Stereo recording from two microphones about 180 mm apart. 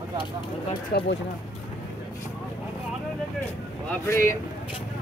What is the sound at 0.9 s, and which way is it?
Speech, 60° left (ahead or behind).